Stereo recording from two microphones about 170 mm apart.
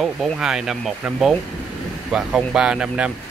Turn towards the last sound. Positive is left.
turn(degrees=-5)  # may be behind; listen again after turning